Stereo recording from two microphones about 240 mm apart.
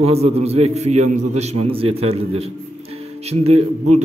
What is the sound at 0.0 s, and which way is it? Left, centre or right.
A man's voice, right.